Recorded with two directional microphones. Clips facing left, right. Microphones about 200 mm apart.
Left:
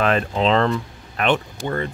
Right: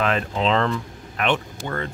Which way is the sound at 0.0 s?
45° left (ahead or behind).